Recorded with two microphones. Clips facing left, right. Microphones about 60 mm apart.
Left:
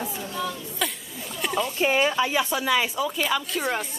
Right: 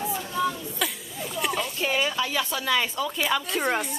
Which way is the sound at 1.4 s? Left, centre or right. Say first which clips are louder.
Left 1 dB; centre.